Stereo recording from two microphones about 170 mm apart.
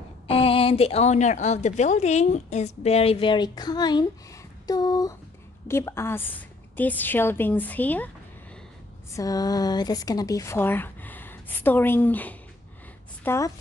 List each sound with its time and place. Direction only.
0.3 s a woman's voice: 35° left (ahead or behind); by 8.1 s 10° left (ahead or behind)
9.1 s speech: 20° left (ahead or behind)